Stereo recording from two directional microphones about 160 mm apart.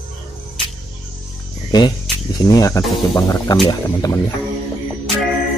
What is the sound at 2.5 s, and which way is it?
Speech, 20° left (ahead or behind).